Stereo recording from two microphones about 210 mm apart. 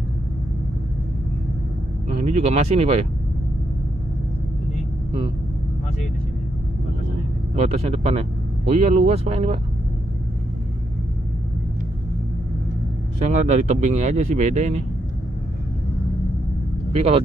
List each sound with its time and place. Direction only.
2.0 s speech: 30° right (ahead or behind)
7.5 s speech: 30° right (ahead or behind)
13.3 s speech: 35° right (ahead or behind)